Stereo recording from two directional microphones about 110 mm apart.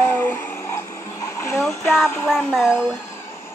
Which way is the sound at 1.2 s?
25° left (ahead or behind).